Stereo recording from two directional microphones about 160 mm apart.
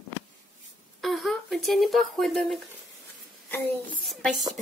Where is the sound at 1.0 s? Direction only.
Centre (ahead or behind).